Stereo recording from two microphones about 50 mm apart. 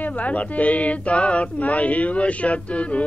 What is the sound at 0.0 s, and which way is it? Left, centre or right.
Mantra, left.